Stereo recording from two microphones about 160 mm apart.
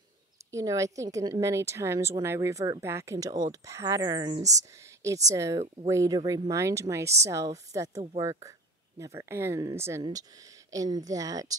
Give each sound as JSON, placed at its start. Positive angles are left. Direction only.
{"t": 0.5, "sound": "a woman's voice", "side_deg": -20}